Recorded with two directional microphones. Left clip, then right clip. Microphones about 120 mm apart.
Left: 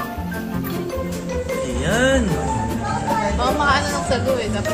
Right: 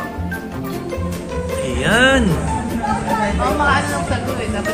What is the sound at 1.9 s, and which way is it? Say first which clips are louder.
Music: right 5 dB; 10° left (ahead or behind).